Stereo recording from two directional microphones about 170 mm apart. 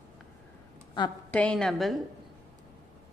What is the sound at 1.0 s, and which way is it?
Speech, 25° left (ahead or behind).